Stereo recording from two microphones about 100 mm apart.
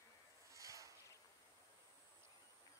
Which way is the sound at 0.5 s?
35° right (ahead or behind).